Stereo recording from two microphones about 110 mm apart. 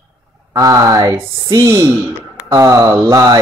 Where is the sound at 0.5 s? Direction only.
35° right (ahead or behind).